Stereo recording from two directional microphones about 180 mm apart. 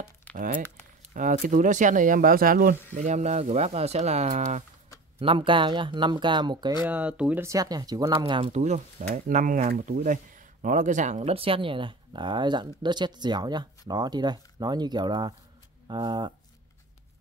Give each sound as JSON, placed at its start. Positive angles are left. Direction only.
{"t": 0.3, "sound": "crumpling", "side_deg": 10}
{"t": 1.1, "sound": "speech", "side_deg": -45}
{"t": 5.2, "sound": "speech", "side_deg": -30}
{"t": 6.8, "sound": "speech", "side_deg": -10}